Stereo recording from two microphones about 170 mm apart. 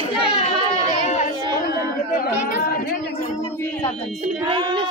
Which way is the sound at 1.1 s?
50° left (ahead or behind).